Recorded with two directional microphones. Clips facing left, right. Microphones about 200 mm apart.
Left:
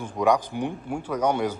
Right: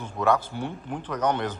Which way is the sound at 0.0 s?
15° left (ahead or behind).